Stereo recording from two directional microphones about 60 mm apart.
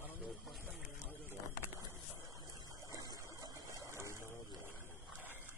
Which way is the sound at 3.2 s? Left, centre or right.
Right.